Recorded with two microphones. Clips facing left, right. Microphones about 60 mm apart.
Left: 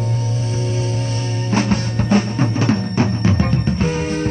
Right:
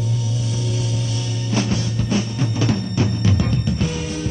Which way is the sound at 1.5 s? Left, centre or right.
Left.